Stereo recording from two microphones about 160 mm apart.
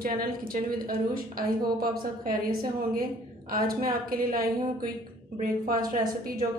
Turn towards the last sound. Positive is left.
turn(degrees=-60)  # may be behind; listen again after turning